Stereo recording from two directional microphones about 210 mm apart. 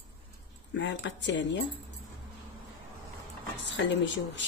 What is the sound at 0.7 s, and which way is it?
Speech, 60° left (ahead or behind).